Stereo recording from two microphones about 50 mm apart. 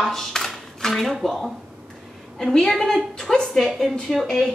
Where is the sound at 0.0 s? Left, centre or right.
Centre.